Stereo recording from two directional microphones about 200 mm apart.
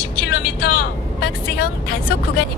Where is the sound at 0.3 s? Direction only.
50° left (ahead or behind).